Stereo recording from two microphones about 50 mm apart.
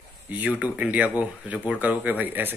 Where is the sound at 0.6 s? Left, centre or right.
Right.